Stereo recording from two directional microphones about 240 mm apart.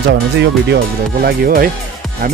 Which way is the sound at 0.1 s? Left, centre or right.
Right.